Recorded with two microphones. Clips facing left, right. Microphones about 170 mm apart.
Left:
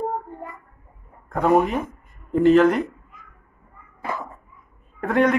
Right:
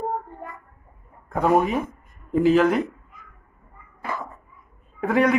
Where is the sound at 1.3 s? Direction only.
Centre (ahead or behind).